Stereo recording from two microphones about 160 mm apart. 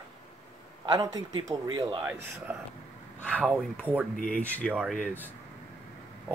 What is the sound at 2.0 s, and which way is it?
Speech, 15° right (ahead or behind).